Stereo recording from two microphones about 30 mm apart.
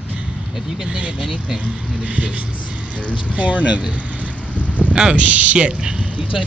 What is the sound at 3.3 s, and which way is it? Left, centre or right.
Speech, right.